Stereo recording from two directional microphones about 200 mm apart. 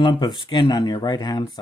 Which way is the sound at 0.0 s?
25° left (ahead or behind).